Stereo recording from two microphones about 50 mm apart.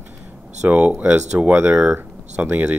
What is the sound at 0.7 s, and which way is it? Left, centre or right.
Speech, right.